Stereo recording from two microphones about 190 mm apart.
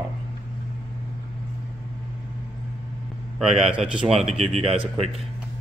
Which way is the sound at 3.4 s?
Centre (ahead or behind).